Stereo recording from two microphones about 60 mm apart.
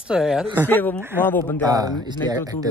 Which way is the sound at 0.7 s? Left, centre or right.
Left.